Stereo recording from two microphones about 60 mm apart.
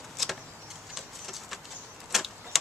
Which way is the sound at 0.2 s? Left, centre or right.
Centre.